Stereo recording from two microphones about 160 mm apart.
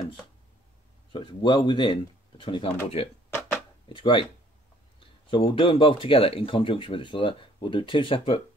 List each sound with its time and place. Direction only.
1.1 s speech: 30° left (ahead or behind)
3.3 s a sound: 15° left (ahead or behind)
3.9 s speech: 30° left (ahead or behind)